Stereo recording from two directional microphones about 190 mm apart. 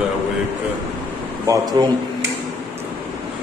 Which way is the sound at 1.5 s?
20° right (ahead or behind).